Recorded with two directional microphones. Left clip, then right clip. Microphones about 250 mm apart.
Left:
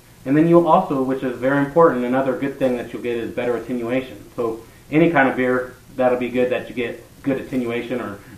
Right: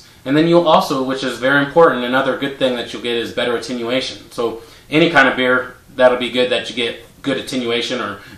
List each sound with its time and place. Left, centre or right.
0.2 s speech: centre